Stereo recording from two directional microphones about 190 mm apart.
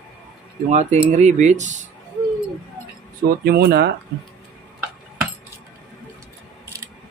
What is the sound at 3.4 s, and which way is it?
Speech, 55° right (ahead or behind).